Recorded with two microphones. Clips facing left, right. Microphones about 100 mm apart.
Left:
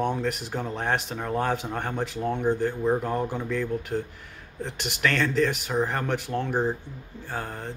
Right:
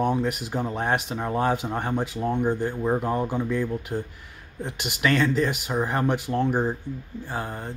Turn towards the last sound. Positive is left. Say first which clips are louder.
# right 2 dB
turn(degrees=-10)  # may be behind; listen again after turning